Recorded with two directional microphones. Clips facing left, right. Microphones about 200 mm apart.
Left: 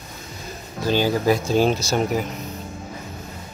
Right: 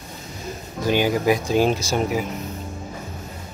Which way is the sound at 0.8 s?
15° right (ahead or behind).